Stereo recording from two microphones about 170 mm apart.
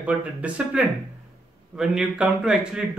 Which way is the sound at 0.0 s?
10° right (ahead or behind).